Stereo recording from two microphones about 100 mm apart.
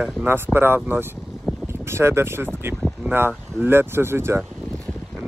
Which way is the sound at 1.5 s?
5° left (ahead or behind).